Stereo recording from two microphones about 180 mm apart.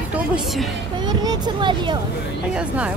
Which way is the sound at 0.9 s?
25° right (ahead or behind).